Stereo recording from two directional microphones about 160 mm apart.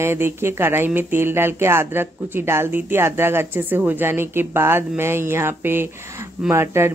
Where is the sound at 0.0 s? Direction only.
15° right (ahead or behind).